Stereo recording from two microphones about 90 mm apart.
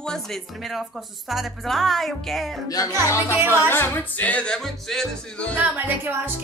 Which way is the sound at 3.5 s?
25° left (ahead or behind).